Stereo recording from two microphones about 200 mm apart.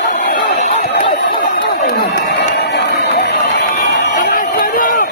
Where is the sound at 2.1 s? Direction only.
55° left (ahead or behind).